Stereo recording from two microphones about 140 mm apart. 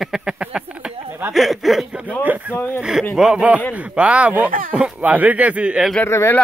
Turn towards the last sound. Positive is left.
turn(degrees=20)  # may be behind; listen again after turning